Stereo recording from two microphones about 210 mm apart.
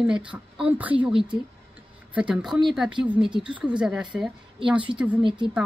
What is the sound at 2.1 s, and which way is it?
A woman's voice, 5° right (ahead or behind).